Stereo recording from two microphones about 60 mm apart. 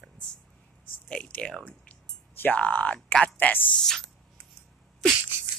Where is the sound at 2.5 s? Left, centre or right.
Left.